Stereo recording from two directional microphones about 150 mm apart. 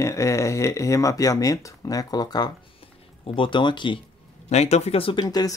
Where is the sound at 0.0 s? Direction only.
20° left (ahead or behind).